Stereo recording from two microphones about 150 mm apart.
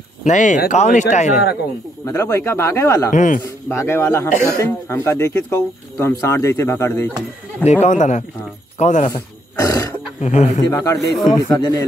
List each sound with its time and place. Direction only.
0.2 s speech: 55° left (ahead or behind)
2.0 s speech: 20° left (ahead or behind)
3.1 s a man's voice: 55° left (ahead or behind)
3.4 s speech: 15° left (ahead or behind)
7.8 s speech: 55° left (ahead or behind)
9.0 s wild animals: 25° left (ahead or behind)
10.2 s speech: 50° left (ahead or behind)
10.6 s speech: 25° left (ahead or behind)